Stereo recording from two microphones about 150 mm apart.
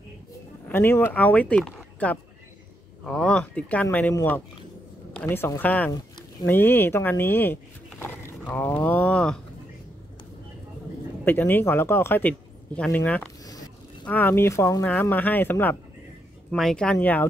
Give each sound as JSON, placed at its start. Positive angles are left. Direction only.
{"t": 0.7, "sound": "speech", "side_deg": 15}
{"t": 11.2, "sound": "speech", "side_deg": 15}
{"t": 16.4, "sound": "speech", "side_deg": 5}